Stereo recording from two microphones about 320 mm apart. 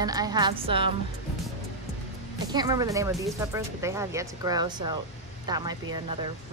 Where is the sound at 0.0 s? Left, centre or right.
Centre.